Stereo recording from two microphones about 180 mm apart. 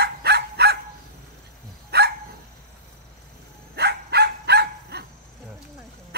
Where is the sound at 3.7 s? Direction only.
65° right (ahead or behind).